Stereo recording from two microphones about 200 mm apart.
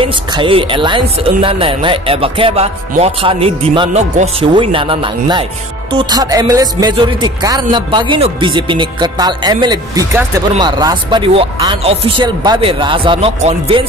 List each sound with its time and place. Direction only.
0.0 s speech: 25° right (ahead or behind)